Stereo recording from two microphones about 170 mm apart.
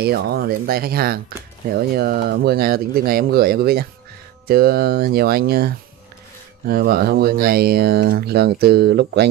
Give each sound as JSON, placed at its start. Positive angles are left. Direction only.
{"t": 0.0, "sound": "speech", "side_deg": -65}